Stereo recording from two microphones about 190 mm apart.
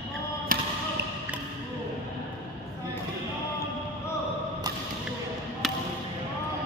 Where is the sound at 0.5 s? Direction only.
50° right (ahead or behind).